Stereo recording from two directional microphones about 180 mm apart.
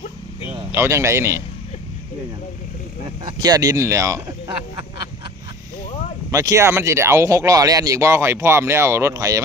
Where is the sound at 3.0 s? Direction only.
20° right (ahead or behind).